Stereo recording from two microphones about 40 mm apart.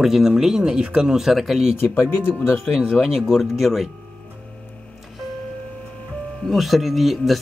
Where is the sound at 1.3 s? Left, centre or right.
Centre.